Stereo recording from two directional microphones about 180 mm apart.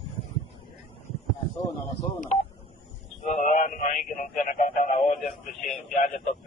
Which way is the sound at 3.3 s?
40° left (ahead or behind).